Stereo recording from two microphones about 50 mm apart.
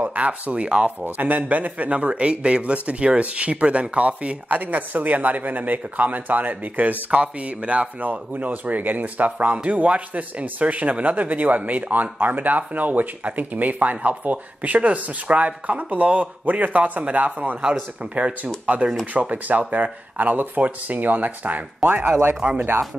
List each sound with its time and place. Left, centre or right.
0.0 s speech: right
1.0 s a man's voice: right
22.4 s a man's voice: right